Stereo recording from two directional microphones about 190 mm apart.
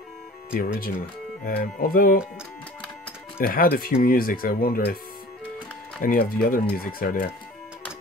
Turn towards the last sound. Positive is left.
turn(degrees=50)  # may be behind; listen again after turning